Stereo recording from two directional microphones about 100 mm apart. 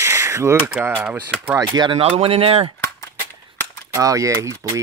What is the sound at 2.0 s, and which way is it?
Speech, 70° right (ahead or behind).